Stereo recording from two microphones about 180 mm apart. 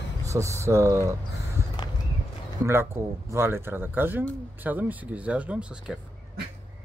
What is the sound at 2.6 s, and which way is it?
Speech, 15° right (ahead or behind).